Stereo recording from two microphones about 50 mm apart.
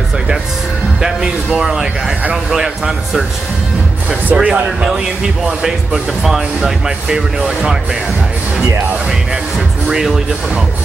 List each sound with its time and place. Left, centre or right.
1.6 s speech: centre
4.4 s speech: right
5.0 s speech: centre
9.8 s speech: centre